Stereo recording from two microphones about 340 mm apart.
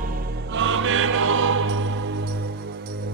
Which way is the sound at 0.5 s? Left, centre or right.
Right.